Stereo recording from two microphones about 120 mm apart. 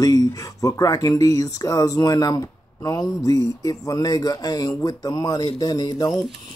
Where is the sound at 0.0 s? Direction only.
30° left (ahead or behind).